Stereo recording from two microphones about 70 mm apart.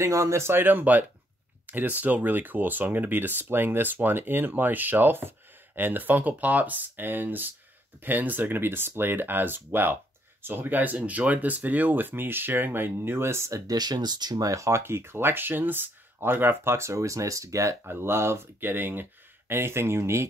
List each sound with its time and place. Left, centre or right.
0.0 s speech: right
13.7 s speech: right
14.8 s speech: right